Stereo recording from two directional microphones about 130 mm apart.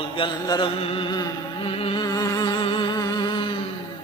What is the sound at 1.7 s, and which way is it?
Mantra, 50° left (ahead or behind).